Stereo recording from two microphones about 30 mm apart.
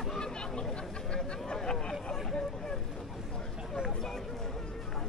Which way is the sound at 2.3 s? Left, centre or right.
Centre.